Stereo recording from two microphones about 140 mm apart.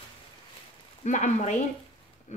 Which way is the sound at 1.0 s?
55° left (ahead or behind).